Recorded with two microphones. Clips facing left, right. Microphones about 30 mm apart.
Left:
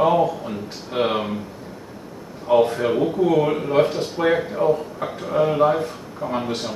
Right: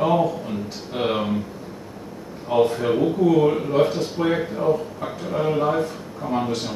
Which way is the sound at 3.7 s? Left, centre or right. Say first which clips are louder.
Left 1 dB; left.